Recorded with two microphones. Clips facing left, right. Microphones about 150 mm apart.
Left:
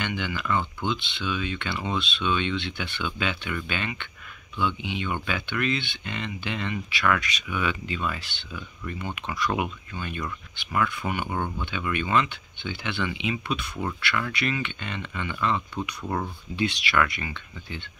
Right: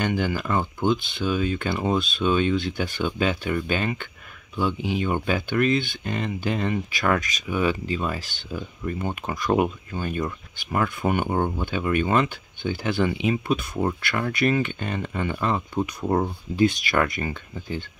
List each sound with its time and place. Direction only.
0.0 s speech: 40° right (ahead or behind)